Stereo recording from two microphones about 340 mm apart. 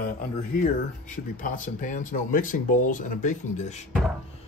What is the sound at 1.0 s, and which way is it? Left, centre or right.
Speech, left.